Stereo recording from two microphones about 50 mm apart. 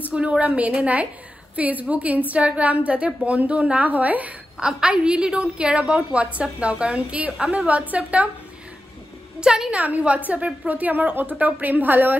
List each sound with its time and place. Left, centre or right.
0.0 s a woman's voice: right
4.6 s a woman's voice: centre
7.6 s a woman's voice: right
9.4 s a woman's voice: centre
9.8 s a woman's voice: right